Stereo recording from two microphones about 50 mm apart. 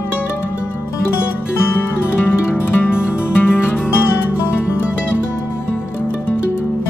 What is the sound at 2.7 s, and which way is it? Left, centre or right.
Music, left.